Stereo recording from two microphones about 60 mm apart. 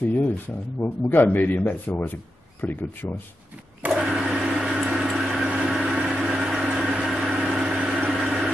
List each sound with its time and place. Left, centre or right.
0.7 s a man's voice: left
3.9 s a sound: centre
5.9 s vehicle: centre
8.2 s vehicle: centre